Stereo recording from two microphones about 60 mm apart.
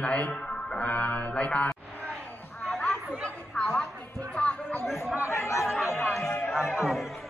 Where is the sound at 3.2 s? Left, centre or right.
Centre.